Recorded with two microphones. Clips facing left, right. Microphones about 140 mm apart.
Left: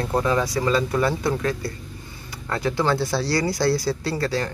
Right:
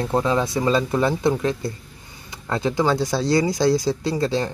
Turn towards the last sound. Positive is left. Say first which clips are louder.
# right 3 dB
turn(degrees=-20)  # may be behind; listen again after turning